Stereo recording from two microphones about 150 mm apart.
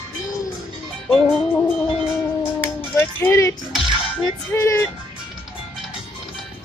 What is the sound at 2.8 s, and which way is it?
Music, 15° left (ahead or behind).